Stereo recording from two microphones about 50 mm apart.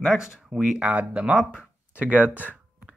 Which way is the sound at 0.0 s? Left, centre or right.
Centre.